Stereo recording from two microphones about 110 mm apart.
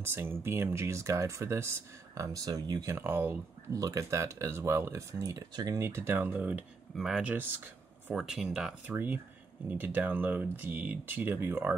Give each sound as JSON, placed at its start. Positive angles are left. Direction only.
{"t": 0.0, "sound": "speech", "side_deg": -20}
{"t": 3.7, "sound": "speech", "side_deg": -30}
{"t": 5.8, "sound": "speech", "side_deg": -25}
{"t": 8.9, "sound": "speech", "side_deg": -15}